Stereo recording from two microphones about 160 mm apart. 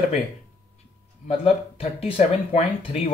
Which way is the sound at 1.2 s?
40° left (ahead or behind).